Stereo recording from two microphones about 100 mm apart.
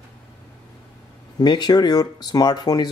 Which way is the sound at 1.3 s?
45° left (ahead or behind).